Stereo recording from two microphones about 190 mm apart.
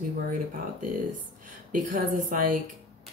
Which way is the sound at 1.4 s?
45° right (ahead or behind).